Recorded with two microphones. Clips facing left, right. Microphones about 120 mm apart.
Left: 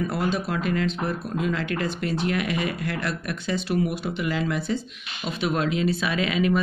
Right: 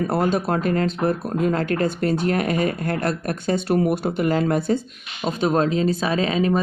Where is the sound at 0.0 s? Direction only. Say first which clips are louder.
Right 5 dB; 50° right (ahead or behind).